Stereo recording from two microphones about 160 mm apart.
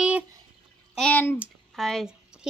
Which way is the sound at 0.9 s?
10° left (ahead or behind).